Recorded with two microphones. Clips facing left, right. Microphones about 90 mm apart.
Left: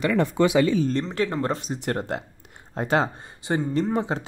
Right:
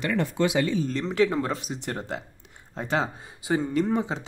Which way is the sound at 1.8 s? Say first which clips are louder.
Left 6 dB; 55° left (ahead or behind).